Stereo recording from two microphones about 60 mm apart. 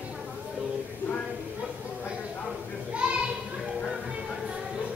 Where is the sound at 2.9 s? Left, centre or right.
Centre.